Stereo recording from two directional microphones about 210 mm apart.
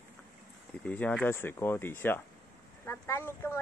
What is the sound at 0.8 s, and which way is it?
Speech, 5° left (ahead or behind).